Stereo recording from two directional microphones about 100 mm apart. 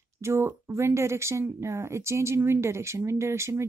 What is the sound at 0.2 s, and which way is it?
Speech, 25° right (ahead or behind).